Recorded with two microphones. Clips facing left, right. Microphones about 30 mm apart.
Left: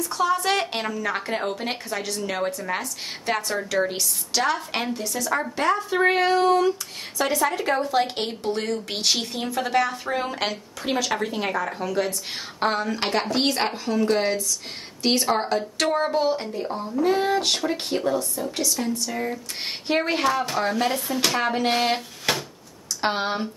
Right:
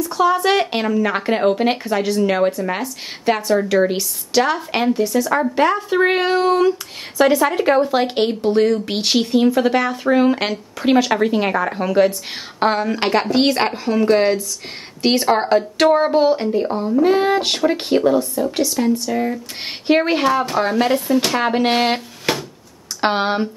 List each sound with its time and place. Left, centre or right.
0.0 s a woman's voice: centre
1.0 s a woman's voice: right
12.1 s speech: right